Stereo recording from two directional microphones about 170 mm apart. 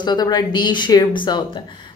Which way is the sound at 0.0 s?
25° left (ahead or behind).